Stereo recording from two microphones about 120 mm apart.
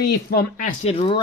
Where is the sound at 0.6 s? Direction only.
90° left.